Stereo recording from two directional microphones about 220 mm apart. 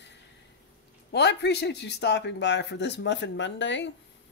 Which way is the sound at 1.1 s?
50° left (ahead or behind).